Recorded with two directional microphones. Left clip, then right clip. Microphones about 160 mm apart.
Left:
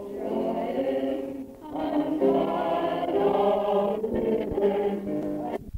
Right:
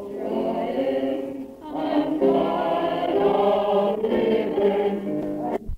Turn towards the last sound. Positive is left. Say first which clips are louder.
# right 3 dB
turn(degrees=-35)  # may be behind; listen again after turning